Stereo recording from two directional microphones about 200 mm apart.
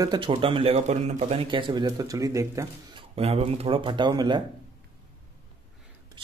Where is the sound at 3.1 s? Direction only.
30° right (ahead or behind).